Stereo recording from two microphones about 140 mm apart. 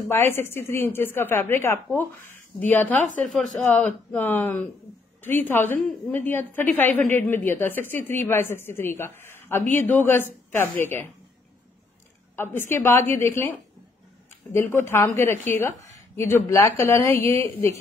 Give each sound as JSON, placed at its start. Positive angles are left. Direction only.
{"t": 0.1, "sound": "a woman's voice", "side_deg": 15}
{"t": 4.1, "sound": "a woman's voice", "side_deg": 15}
{"t": 12.4, "sound": "a woman's voice", "side_deg": 15}